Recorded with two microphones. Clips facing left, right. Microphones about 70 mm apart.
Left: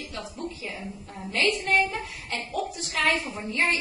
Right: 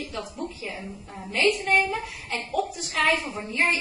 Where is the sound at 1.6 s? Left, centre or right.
Centre.